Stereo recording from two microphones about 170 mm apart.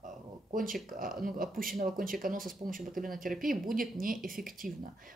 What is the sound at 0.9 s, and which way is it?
Speech, 55° right (ahead or behind).